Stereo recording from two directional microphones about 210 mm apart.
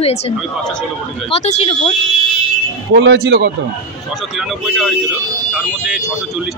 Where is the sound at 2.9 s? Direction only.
55° right (ahead or behind).